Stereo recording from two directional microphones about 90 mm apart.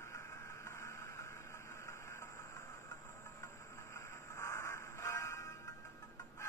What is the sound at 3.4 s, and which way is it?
Train, 30° left (ahead or behind).